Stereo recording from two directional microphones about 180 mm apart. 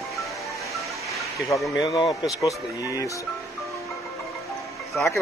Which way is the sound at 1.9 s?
20° left (ahead or behind).